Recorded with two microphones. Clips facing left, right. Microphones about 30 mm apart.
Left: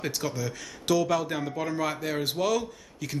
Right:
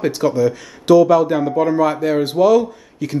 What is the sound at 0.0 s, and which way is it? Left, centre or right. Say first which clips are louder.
Speech: right 15 dB; centre.